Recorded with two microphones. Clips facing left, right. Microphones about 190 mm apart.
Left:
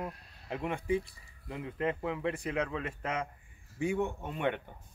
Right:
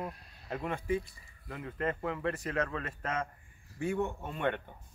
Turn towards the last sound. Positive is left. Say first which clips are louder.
# even
turn(degrees=15)  # may be behind; listen again after turning